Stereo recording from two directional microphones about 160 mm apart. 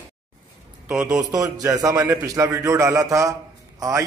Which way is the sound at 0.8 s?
5° right (ahead or behind).